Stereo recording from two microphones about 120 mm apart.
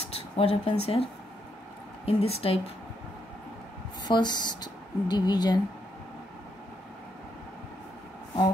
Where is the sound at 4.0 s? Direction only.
35° left (ahead or behind).